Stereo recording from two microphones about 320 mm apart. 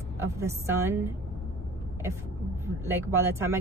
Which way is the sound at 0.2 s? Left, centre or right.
Centre.